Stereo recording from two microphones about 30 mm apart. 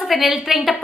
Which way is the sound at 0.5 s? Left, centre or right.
Centre.